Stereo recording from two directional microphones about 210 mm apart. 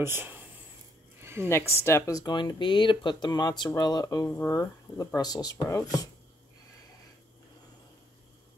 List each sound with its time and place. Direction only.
0.0 s speech: 10° right (ahead or behind)
1.2 s a sound: 10° right (ahead or behind)
1.5 s speech: 10° left (ahead or behind)